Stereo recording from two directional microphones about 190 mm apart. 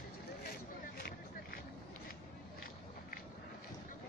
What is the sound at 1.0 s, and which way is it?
Vehicle, 50° left (ahead or behind).